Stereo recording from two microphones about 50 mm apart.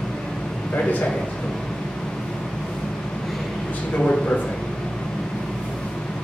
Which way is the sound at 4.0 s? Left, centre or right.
Centre.